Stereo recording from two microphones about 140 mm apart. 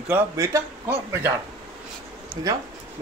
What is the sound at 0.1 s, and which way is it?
A man's voice, 20° right (ahead or behind).